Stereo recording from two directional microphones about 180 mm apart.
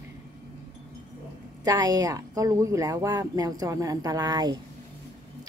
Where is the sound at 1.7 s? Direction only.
20° right (ahead or behind).